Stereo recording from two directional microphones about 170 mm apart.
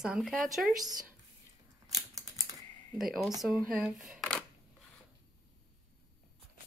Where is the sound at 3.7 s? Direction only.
5° right (ahead or behind).